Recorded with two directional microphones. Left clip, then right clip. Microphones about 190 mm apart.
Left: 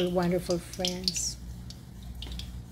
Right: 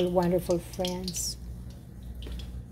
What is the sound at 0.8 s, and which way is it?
Speech, 25° right (ahead or behind).